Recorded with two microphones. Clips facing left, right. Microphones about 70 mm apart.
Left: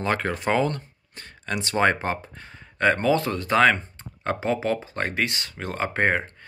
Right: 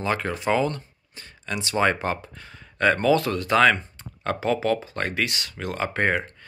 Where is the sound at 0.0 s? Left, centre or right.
Left.